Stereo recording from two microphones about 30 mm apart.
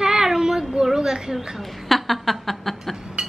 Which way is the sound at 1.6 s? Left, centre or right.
Centre.